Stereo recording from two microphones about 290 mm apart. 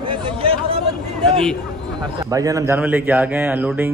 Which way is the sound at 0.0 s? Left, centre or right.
Centre.